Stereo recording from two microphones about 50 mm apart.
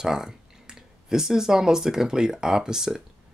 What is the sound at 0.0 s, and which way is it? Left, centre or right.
Speech, centre.